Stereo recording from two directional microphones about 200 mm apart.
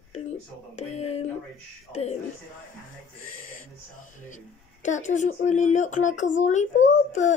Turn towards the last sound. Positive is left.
turn(degrees=35)  # may be behind; listen again after turning